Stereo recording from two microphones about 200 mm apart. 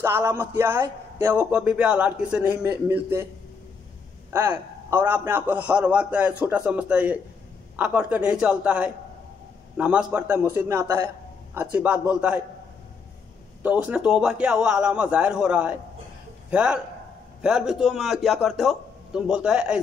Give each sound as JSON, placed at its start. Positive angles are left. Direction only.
{"t": 0.0, "sound": "a man's voice", "side_deg": -10}
{"t": 4.3, "sound": "a man's voice", "side_deg": -10}
{"t": 13.6, "sound": "a man's voice", "side_deg": -5}